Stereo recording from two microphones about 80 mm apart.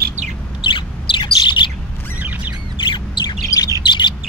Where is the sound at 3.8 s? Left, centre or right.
Left.